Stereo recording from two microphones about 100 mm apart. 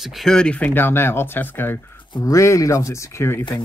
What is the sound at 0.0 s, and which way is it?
Speech, centre (ahead or behind).